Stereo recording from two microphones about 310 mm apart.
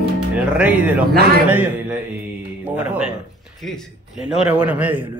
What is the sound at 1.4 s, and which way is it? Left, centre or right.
A man's voice, centre.